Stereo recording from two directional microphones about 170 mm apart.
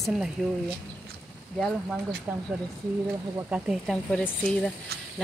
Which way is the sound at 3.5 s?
Centre (ahead or behind).